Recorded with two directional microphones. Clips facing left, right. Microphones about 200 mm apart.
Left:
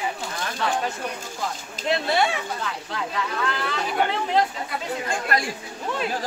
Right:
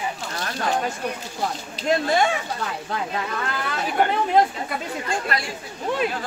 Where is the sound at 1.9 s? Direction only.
45° right (ahead or behind).